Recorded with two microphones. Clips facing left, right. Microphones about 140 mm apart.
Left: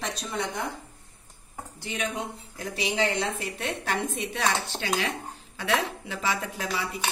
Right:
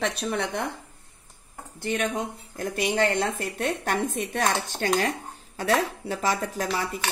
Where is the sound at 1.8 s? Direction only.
50° right (ahead or behind).